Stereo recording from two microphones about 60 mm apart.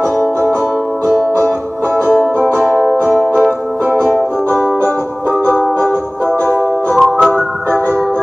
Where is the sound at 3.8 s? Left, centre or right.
Right.